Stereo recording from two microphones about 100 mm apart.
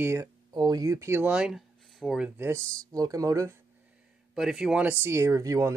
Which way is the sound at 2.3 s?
25° right (ahead or behind).